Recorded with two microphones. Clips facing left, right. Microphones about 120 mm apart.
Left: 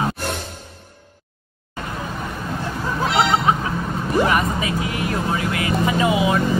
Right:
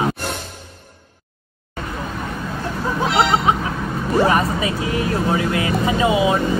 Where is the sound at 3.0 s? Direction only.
Centre (ahead or behind).